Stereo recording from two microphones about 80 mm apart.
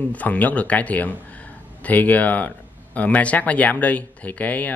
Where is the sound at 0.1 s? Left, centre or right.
Centre.